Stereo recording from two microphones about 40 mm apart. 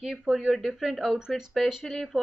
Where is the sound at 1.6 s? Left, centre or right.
Centre.